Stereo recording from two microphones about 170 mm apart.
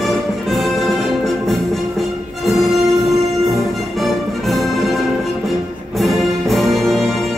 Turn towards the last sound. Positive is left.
turn(degrees=0)  # may be behind; listen again after turning